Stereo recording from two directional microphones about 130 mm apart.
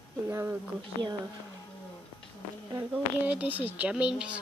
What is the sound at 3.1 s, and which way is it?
Speech, 10° right (ahead or behind).